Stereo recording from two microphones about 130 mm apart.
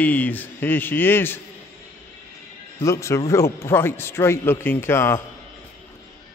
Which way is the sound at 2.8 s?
20° left (ahead or behind).